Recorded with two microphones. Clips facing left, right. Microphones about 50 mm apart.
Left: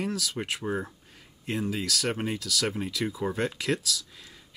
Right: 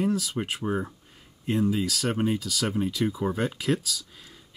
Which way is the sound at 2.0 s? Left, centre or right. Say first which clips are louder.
Right 4 dB; centre.